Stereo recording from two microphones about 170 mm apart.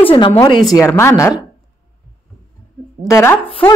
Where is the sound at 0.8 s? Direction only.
15° left (ahead or behind).